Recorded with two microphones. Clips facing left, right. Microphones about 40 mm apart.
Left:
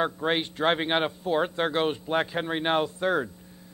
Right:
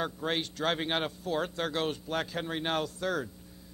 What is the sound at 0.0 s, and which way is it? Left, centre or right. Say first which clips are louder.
A man's voice: left 6 dB; left.